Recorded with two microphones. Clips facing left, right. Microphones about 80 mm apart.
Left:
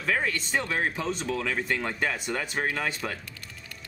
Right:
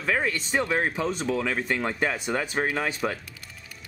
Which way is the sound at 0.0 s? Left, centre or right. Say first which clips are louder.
Right 2 dB; centre.